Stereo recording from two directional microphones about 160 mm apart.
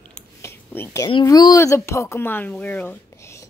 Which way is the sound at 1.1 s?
25° left (ahead or behind).